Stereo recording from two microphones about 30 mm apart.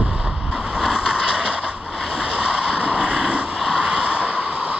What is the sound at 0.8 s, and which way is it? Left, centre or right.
Vehicle, centre.